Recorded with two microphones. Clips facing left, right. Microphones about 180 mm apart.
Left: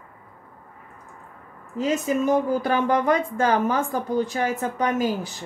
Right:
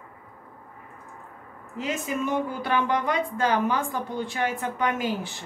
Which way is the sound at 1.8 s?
40° left (ahead or behind).